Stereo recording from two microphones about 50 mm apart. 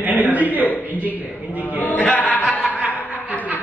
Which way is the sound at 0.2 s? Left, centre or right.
Right.